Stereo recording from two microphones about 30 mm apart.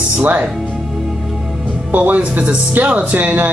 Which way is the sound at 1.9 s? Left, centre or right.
Right.